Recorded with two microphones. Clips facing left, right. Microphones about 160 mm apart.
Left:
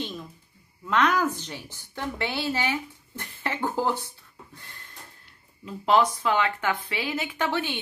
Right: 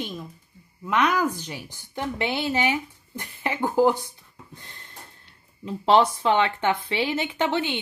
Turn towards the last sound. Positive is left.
turn(degrees=-20)  # may be behind; listen again after turning